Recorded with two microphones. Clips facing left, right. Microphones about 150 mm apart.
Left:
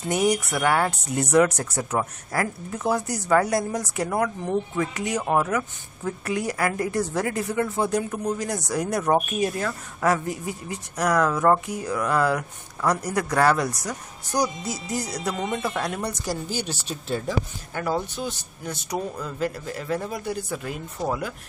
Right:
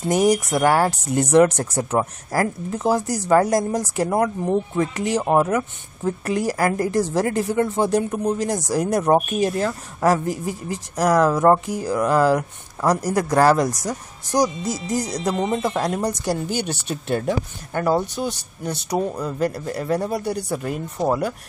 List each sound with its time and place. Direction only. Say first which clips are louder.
0.1 s speech: right 5 dB; 40° right (ahead or behind)
15.3 s speech: right 5 dB; 30° right (ahead or behind)
16.3 s a woman's voice: right 5 dB; 60° right (ahead or behind)
18.2 s speech: right 5 dB; 50° right (ahead or behind)
18.9 s speech: right 6 dB; 35° right (ahead or behind)